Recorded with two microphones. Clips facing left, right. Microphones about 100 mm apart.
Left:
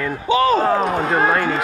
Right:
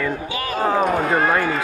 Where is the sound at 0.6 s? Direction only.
5° right (ahead or behind).